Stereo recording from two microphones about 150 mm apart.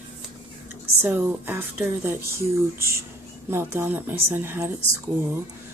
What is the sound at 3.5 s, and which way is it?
Speech, 15° right (ahead or behind).